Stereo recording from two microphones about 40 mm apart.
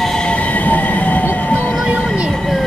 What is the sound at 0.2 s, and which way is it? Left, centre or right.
Train, left.